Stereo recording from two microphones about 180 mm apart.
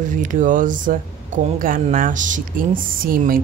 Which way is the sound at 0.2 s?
45° right (ahead or behind).